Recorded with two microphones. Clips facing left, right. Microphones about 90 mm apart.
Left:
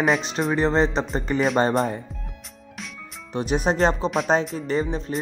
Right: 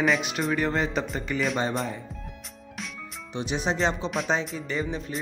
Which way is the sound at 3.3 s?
45° left (ahead or behind).